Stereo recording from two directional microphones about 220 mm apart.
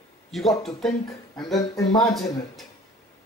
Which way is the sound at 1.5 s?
15° left (ahead or behind).